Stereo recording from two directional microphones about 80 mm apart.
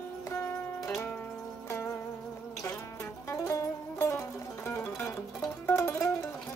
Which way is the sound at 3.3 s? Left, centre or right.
Left.